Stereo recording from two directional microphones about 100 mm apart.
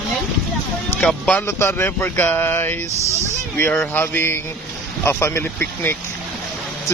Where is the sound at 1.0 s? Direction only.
15° left (ahead or behind).